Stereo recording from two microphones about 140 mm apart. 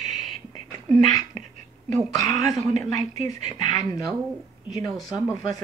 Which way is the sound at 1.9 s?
55° right (ahead or behind).